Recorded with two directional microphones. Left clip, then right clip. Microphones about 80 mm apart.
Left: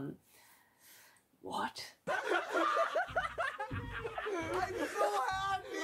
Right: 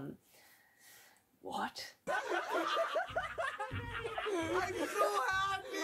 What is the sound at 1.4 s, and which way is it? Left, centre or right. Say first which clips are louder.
Speech: left 1 dB; right.